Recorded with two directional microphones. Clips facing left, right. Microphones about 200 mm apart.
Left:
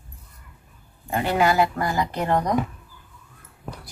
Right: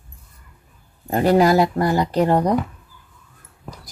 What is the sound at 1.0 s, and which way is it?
Speech, 40° right (ahead or behind).